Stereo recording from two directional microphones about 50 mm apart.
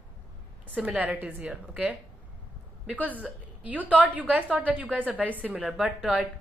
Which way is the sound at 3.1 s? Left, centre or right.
Right.